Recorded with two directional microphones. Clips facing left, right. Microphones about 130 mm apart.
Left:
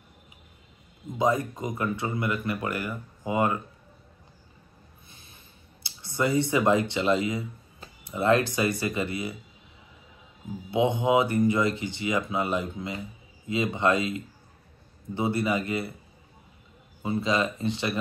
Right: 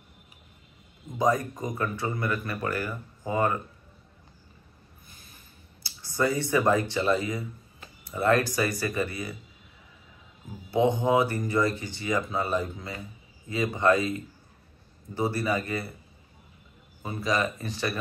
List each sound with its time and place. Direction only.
1.1 s speech: 25° left (ahead or behind)
5.1 s a sound: 25° left (ahead or behind)
5.9 s speech: 20° left (ahead or behind)
10.7 s speech: 20° left (ahead or behind)
17.0 s speech: 25° left (ahead or behind)